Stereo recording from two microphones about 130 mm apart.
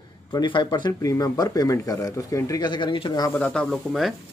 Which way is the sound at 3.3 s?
10° left (ahead or behind).